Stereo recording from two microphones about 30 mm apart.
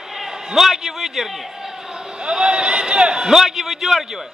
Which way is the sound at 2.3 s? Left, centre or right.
Right.